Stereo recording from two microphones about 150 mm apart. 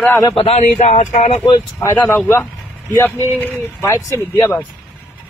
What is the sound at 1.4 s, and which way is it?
Speech, 20° left (ahead or behind).